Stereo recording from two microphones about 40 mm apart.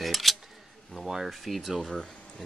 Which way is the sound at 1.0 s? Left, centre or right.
Centre.